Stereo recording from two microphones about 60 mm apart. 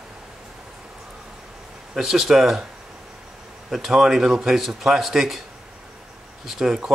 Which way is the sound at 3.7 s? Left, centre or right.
Centre.